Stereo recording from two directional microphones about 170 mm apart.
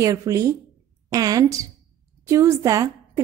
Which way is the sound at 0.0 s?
20° right (ahead or behind).